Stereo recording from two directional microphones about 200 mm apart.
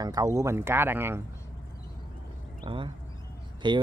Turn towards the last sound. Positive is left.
turn(degrees=-20)  # may be behind; listen again after turning